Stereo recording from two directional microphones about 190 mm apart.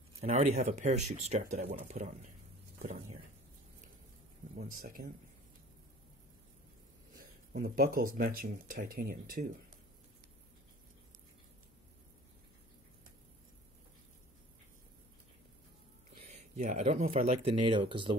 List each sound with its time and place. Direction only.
0.2 s speech: 35° right (ahead or behind)
4.6 s speech: 45° right (ahead or behind)
7.5 s speech: 50° right (ahead or behind)
16.3 s speech: 40° right (ahead or behind)